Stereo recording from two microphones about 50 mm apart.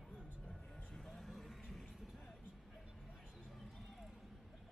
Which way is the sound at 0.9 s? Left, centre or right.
Centre.